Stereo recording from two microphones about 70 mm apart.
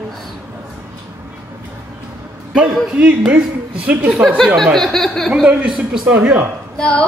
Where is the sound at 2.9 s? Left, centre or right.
Centre.